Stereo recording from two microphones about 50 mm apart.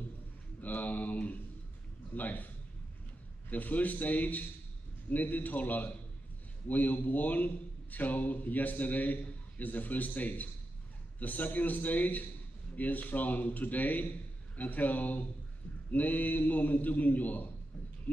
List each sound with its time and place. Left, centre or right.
0.6 s a sound: left
3.4 s a man's voice: left
18.1 s owl: left